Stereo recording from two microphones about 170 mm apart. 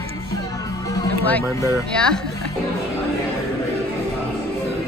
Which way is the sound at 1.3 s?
15° left (ahead or behind).